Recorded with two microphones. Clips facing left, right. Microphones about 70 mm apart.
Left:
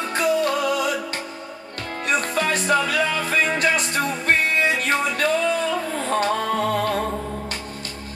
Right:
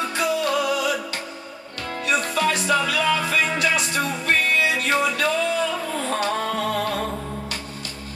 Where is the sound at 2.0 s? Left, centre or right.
Left.